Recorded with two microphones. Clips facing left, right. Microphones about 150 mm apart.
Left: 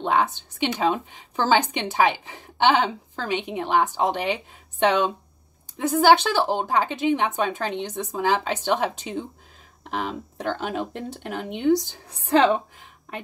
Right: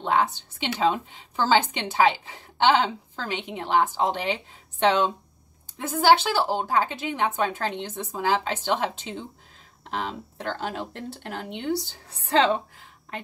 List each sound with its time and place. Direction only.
0.0 s a woman's voice: 15° left (ahead or behind)
6.1 s a woman's voice: 20° left (ahead or behind)